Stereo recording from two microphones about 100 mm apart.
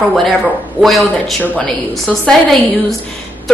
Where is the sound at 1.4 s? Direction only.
10° left (ahead or behind).